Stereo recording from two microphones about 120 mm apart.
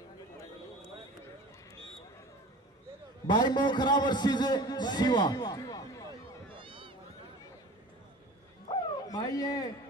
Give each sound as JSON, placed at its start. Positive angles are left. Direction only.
{"t": 3.3, "sound": "a man's voice", "side_deg": 35}
{"t": 6.5, "sound": "run", "side_deg": -45}
{"t": 8.7, "sound": "bow-wow", "side_deg": 30}
{"t": 9.0, "sound": "speech", "side_deg": 30}